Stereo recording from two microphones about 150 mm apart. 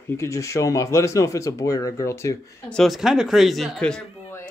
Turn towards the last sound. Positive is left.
turn(degrees=5)  # may be behind; listen again after turning